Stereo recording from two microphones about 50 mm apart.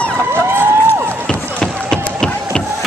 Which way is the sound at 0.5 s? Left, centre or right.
Right.